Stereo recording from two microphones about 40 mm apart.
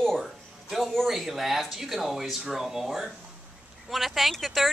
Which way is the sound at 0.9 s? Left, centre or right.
Centre.